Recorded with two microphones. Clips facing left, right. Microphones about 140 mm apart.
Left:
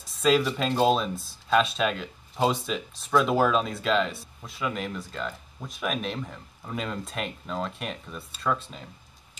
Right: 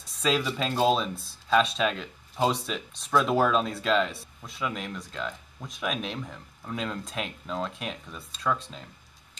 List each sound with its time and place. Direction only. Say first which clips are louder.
0.0 s speech: left 4 dB; centre (ahead or behind)